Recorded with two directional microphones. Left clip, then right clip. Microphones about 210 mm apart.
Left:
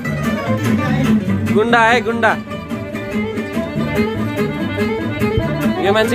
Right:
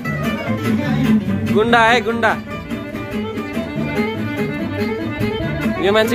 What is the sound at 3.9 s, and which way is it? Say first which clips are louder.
Music: left 2 dB; 50° left (ahead or behind).